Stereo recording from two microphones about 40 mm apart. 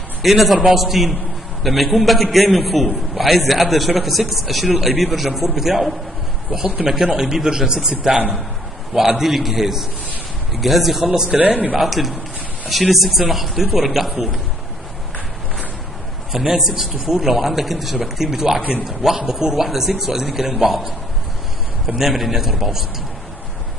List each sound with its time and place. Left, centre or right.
0.2 s a man's voice: centre
11.2 s a man's voice: right
11.8 s a man's voice: centre
16.3 s a man's voice: centre
21.8 s a man's voice: centre